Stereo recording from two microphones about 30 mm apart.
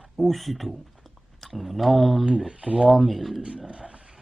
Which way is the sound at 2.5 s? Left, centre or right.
Right.